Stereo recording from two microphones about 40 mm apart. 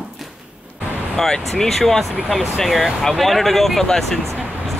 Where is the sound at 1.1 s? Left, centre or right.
Centre.